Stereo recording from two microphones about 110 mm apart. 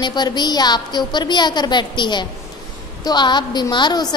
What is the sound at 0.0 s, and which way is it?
A woman's voice, 40° left (ahead or behind).